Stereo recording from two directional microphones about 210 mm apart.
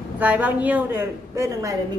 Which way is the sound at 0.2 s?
5° right (ahead or behind).